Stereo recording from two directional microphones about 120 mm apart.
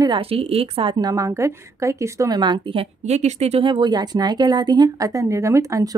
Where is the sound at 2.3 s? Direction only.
40° right (ahead or behind).